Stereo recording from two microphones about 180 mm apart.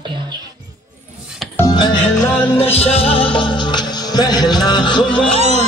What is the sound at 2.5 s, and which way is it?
Music, 35° left (ahead or behind).